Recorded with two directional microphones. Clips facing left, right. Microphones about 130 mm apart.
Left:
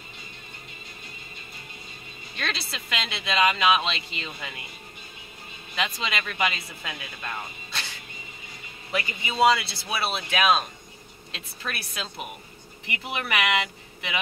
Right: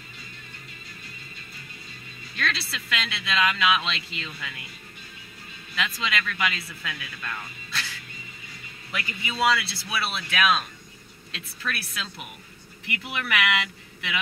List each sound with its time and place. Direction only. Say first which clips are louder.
2.3 s speech: right 2 dB; 30° left (ahead or behind)
5.8 s speech: even; 30° left (ahead or behind)